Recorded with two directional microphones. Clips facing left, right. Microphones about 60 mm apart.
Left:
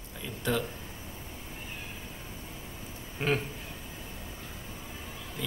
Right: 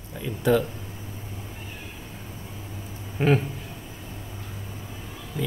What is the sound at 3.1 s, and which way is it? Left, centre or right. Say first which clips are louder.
Speech: right 8 dB; centre.